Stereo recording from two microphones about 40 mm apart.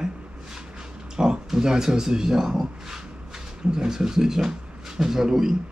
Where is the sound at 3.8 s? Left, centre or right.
Centre.